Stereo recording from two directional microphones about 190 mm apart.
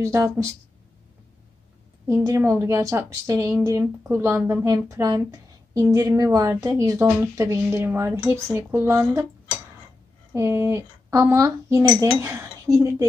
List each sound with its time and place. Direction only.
0.0 s speech: 15° right (ahead or behind)
2.2 s speech: 15° right (ahead or behind)
10.3 s speech: 15° right (ahead or behind)